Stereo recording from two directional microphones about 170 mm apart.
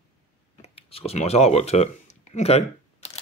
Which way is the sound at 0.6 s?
35° left (ahead or behind).